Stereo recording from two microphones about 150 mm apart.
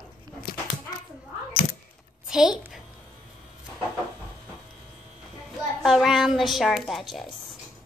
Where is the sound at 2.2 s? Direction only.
5° right (ahead or behind).